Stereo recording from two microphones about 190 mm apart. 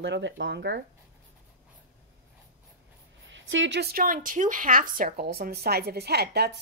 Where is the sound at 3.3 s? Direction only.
80° right.